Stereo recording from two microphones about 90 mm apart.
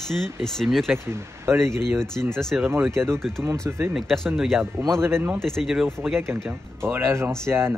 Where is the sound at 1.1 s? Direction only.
30° right (ahead or behind).